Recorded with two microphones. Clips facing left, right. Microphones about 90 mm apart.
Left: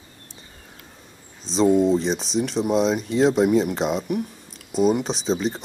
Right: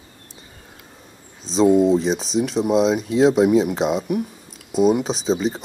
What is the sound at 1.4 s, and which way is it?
Speech, centre (ahead or behind).